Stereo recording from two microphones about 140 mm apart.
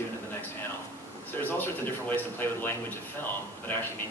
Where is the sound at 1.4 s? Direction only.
15° left (ahead or behind).